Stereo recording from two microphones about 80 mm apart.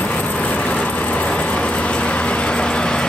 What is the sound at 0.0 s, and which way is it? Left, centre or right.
Vehicle, centre.